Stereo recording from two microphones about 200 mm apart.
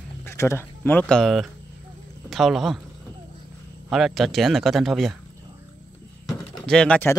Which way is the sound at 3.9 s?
Centre (ahead or behind).